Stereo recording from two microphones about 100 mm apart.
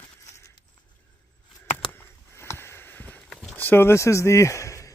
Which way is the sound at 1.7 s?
25° left (ahead or behind).